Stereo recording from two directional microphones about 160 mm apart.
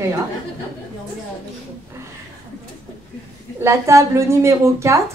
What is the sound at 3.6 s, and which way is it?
A woman's voice, 15° right (ahead or behind).